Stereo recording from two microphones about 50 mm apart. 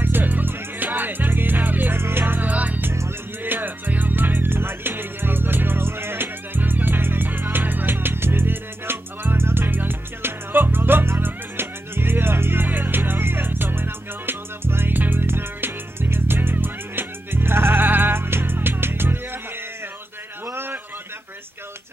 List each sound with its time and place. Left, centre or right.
0.0 s music: right
12.6 s music: right
20.5 s a sound: right